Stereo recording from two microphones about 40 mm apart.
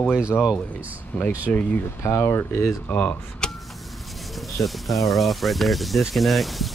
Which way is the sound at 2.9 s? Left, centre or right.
Left.